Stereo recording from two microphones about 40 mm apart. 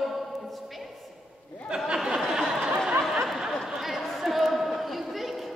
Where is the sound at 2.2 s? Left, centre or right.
Centre.